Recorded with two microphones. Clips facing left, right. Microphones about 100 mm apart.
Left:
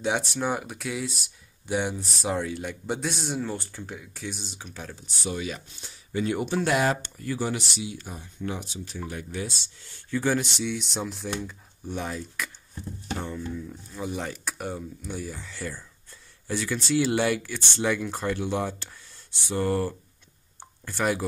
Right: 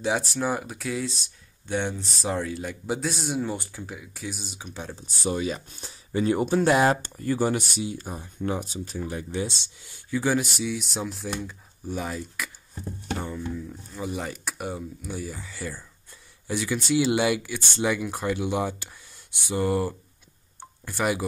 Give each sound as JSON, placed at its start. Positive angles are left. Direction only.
{"t": 0.0, "sound": "speech", "side_deg": 0}
{"t": 5.2, "sound": "speech", "side_deg": -35}
{"t": 8.9, "sound": "speech", "side_deg": -30}